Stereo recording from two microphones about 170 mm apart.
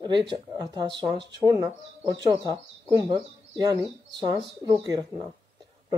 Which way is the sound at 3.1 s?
20° right (ahead or behind).